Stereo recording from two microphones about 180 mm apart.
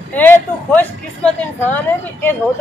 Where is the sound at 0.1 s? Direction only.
10° left (ahead or behind).